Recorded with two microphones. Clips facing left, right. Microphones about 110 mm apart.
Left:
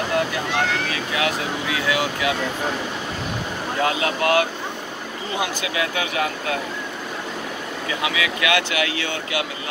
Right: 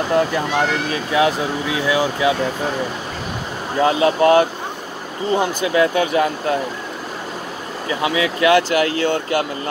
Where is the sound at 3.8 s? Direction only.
30° right (ahead or behind).